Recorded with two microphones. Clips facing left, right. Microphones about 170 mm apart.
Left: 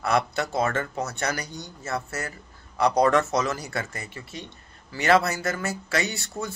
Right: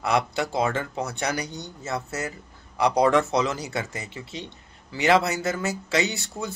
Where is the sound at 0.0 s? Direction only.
15° right (ahead or behind).